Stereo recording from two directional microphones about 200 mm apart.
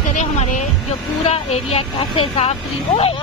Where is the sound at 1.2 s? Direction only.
30° left (ahead or behind).